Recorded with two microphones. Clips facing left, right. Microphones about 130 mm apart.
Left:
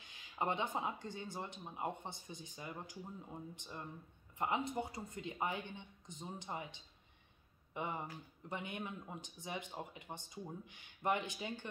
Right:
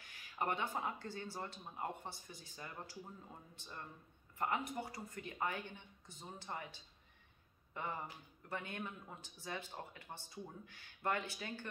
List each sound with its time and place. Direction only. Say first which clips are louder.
0.0 s speech: left 1 dB; 20° left (ahead or behind)